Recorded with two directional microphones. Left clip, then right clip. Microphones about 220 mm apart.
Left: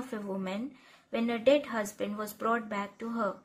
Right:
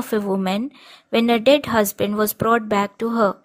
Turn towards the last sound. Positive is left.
turn(degrees=-45)  # may be behind; listen again after turning